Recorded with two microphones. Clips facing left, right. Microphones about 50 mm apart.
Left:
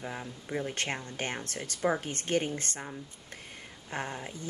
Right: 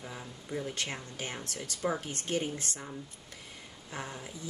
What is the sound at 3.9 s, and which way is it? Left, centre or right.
Speech, left.